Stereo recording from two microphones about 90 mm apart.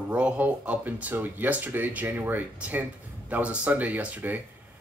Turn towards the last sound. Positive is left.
turn(degrees=-15)  # may be behind; listen again after turning